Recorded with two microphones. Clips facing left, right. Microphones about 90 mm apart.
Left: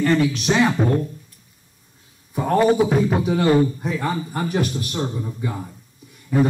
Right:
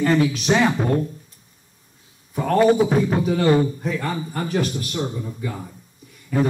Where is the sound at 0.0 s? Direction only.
5° right (ahead or behind).